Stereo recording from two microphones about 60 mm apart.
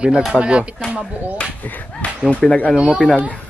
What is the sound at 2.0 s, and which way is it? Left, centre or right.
Speech, left.